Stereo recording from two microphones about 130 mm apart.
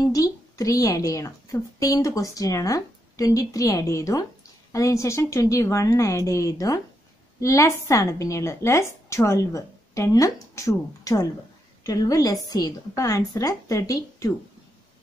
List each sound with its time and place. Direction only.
0.0 s a woman's voice: 25° left (ahead or behind)